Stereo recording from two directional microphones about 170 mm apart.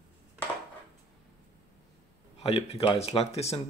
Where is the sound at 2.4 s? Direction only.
35° left (ahead or behind).